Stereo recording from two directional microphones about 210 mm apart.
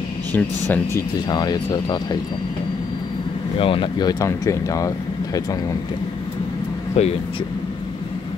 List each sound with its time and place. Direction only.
0.3 s speech: 10° left (ahead or behind)
3.5 s speech: 25° left (ahead or behind)
7.0 s speech: 30° left (ahead or behind)